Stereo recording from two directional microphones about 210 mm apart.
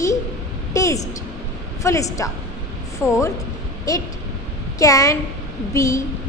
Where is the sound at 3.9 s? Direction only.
15° left (ahead or behind).